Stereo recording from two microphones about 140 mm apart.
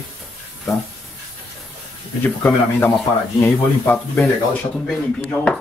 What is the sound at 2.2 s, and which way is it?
Speech, 10° left (ahead or behind).